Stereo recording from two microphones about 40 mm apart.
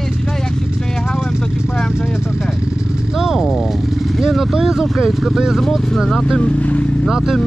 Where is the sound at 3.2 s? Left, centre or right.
Centre.